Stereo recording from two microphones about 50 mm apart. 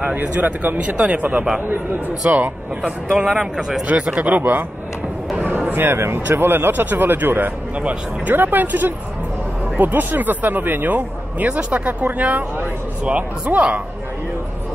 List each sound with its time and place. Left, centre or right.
0.1 s speech: right
3.3 s speech: centre
3.8 s speech: right
5.7 s speech: right